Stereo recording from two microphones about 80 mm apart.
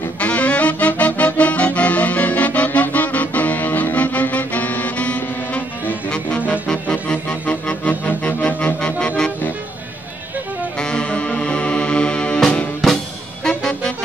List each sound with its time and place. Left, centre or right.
0.2 s music: centre
10.8 s music: centre